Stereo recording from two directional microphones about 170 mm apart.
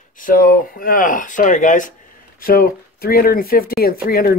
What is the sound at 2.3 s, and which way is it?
Speech, 60° left (ahead or behind).